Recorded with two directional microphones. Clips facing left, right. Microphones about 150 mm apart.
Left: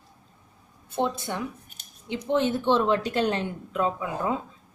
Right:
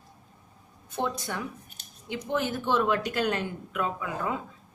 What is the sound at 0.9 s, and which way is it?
Speech, 25° left (ahead or behind).